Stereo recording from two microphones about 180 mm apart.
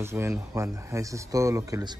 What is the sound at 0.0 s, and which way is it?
Speech, 15° right (ahead or behind).